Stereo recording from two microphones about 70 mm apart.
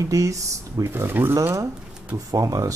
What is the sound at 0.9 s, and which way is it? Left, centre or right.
Speech, right.